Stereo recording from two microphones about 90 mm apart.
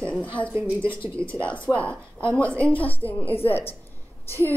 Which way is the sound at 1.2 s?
30° right (ahead or behind).